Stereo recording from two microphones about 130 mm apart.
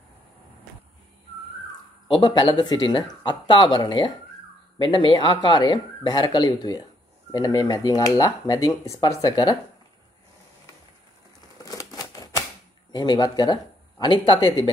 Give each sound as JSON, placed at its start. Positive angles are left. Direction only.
{"t": 2.0, "sound": "speech", "side_deg": 35}
{"t": 11.6, "sound": "typewriter", "side_deg": 30}
{"t": 12.9, "sound": "speech", "side_deg": 35}